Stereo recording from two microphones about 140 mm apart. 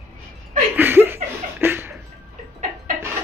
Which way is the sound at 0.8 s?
15° right (ahead or behind).